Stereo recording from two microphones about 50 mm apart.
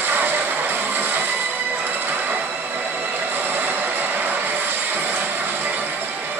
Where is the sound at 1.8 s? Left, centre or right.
Right.